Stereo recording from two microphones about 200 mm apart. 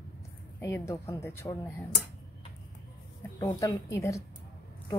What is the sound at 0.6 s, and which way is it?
Speech, 15° left (ahead or behind).